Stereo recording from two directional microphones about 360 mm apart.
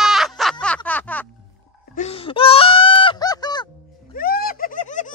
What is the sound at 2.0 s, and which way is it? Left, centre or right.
Honk, centre.